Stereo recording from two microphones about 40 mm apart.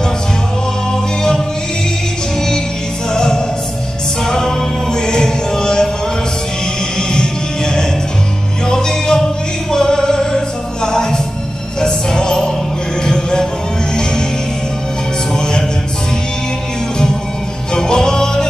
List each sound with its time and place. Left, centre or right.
3.1 s music: centre
7.0 s music: centre
15.3 s music: centre
17.7 s music: centre